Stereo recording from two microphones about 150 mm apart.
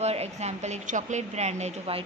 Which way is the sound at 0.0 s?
45° right (ahead or behind).